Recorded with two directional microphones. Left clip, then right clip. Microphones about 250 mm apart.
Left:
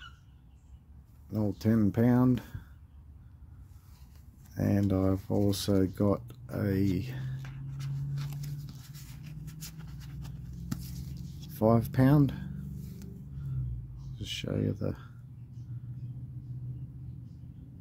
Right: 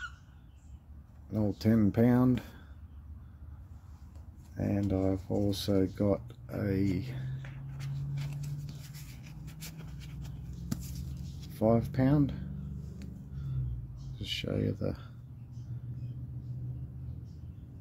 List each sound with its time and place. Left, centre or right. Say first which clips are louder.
1.3 s speech: even; centre
4.6 s speech: left 2 dB; centre
9.2 s writing: left 2 dB; centre
11.5 s speech: left 2 dB; centre
14.1 s speech: right 1 dB; centre